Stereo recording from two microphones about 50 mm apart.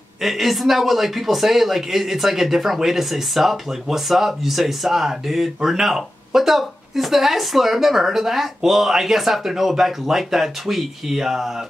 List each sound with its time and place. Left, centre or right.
0.2 s speech: centre